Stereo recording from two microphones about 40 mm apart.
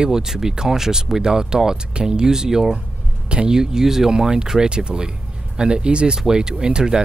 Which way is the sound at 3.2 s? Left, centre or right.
Right.